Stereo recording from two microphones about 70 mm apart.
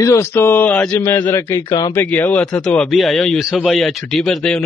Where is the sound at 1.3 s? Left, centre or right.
Left.